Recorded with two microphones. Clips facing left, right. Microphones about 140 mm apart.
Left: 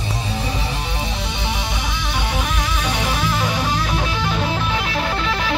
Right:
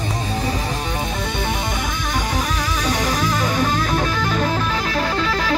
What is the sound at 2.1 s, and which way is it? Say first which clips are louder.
Music: right 1 dB; 40° right (ahead or behind).